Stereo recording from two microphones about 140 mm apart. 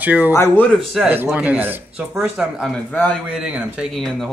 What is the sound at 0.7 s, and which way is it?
Speech, 5° right (ahead or behind).